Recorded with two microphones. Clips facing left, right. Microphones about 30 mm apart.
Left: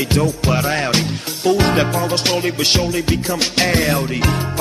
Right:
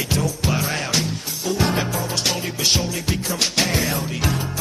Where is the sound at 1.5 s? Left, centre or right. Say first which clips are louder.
Left 6 dB; left.